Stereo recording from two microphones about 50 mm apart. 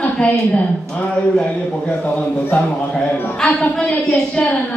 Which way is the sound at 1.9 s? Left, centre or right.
Left.